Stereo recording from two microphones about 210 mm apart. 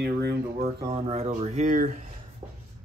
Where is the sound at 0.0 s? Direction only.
50° right (ahead or behind).